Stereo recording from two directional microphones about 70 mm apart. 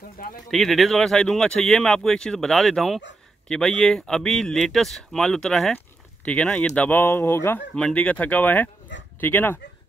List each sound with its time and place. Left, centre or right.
0.5 s speech: centre
6.2 s speech: centre
7.0 s speech: left
7.7 s speech: centre